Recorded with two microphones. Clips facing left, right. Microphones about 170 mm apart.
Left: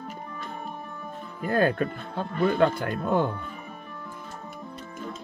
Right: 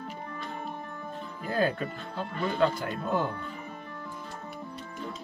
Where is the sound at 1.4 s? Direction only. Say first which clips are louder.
Left 5 dB; 55° left (ahead or behind).